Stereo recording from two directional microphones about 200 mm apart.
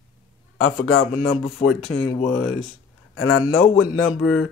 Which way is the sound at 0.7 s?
60° left (ahead or behind).